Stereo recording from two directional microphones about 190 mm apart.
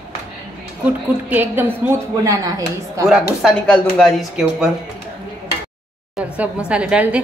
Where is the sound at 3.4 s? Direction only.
Centre (ahead or behind).